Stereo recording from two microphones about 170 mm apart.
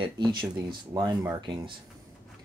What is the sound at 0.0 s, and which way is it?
Speech, 25° right (ahead or behind).